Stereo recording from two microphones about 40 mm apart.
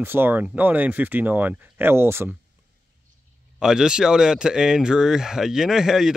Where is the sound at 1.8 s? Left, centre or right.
Right.